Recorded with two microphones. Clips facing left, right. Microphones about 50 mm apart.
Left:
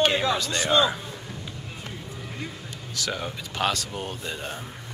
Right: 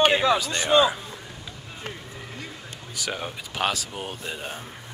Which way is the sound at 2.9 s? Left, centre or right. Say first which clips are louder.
Left 1 dB; centre.